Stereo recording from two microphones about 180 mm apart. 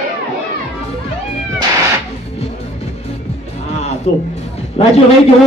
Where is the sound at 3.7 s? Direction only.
40° left (ahead or behind).